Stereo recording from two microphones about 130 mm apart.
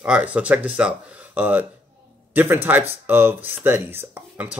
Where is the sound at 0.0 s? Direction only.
10° right (ahead or behind).